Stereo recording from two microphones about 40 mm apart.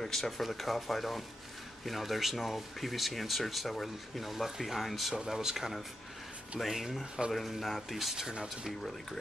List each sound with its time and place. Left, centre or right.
0.0 s speech: centre